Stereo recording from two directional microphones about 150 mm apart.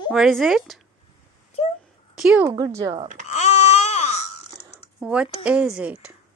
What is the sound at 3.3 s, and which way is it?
Wail, 50° left (ahead or behind).